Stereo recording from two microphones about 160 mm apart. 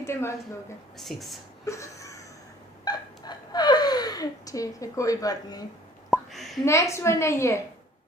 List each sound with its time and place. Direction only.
0.0 s a woman's voice: 15° left (ahead or behind)
0.9 s speech: centre (ahead or behind)
1.6 s a sound: 20° left (ahead or behind)
2.8 s gasp: 25° left (ahead or behind)
6.0 s a sound: centre (ahead or behind)
6.6 s a woman's voice: 20° left (ahead or behind)